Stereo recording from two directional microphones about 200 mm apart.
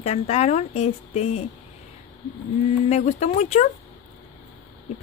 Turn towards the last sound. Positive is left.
turn(degrees=35)  # may be behind; listen again after turning